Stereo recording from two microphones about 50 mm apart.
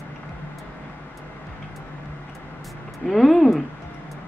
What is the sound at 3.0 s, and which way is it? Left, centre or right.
Speech, centre.